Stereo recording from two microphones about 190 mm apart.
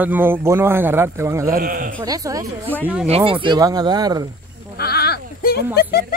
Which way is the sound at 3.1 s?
30° right (ahead or behind).